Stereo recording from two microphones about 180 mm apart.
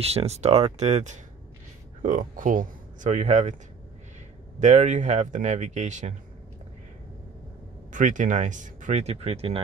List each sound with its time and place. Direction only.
0.0 s speech: 35° right (ahead or behind)
4.6 s speech: 40° right (ahead or behind)
7.9 s speech: 45° right (ahead or behind)